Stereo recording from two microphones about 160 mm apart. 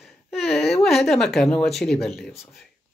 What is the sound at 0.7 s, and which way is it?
Speech, centre (ahead or behind).